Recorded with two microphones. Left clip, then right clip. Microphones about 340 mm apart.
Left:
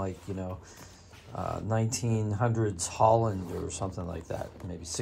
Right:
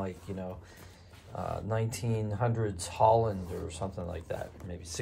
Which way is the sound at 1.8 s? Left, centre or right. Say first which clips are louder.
Left 2 dB; left.